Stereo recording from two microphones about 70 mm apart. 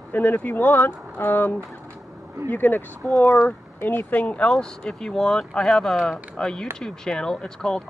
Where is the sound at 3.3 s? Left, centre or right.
Left.